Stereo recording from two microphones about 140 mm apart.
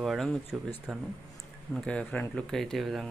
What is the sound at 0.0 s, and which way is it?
Speech, centre (ahead or behind).